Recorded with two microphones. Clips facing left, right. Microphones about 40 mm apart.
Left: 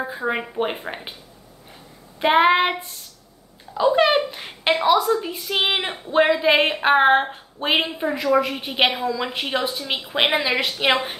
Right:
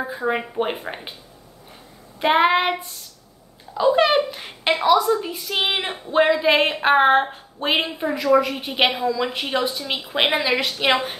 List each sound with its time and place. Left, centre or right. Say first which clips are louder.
0.0 s speech: right 1 dB; centre
2.1 s speech: left 1 dB; centre
3.7 s a woman's voice: even; centre